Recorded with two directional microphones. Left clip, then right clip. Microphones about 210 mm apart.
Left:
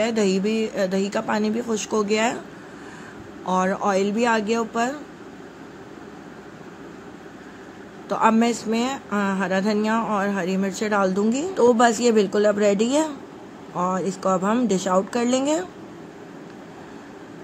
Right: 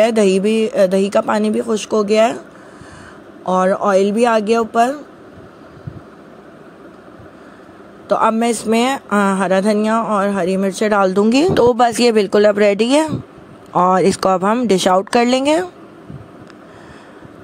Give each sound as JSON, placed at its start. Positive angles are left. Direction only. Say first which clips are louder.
{"t": 0.0, "sound": "speech", "louder": "right 9 dB", "side_deg": -35}
{"t": 3.4, "sound": "speech", "louder": "right 7 dB", "side_deg": -25}
{"t": 8.1, "sound": "speech", "louder": "right 5 dB", "side_deg": -30}